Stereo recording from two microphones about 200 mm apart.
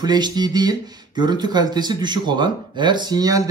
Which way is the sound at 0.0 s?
20° right (ahead or behind).